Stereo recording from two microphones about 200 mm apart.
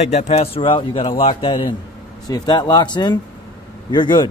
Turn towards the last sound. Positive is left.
turn(degrees=20)  # may be behind; listen again after turning